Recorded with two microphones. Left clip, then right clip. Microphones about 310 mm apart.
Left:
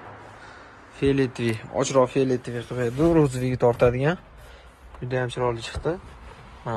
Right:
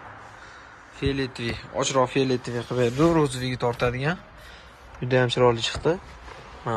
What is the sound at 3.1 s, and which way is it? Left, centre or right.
Speech, centre.